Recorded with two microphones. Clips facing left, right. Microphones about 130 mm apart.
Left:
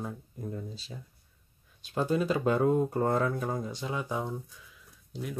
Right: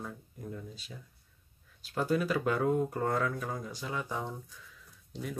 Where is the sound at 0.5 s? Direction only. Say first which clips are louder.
Left 4 dB; 30° left (ahead or behind).